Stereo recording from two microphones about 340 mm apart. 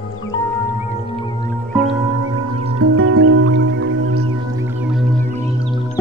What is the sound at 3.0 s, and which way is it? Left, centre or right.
Music, right.